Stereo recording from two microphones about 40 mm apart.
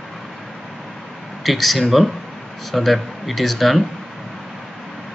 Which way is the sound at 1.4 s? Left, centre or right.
Centre.